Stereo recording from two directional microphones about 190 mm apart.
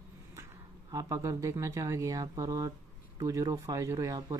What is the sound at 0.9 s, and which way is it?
Speech, 15° right (ahead or behind).